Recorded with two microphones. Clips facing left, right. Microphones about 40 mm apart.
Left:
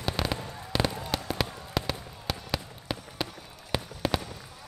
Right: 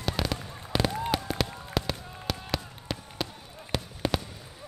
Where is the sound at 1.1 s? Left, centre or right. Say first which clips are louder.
Right 1 dB; centre.